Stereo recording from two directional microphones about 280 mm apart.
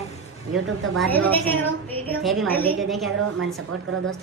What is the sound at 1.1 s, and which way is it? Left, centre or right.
A woman's voice, centre.